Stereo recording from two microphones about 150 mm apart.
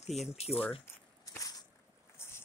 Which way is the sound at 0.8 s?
20° left (ahead or behind).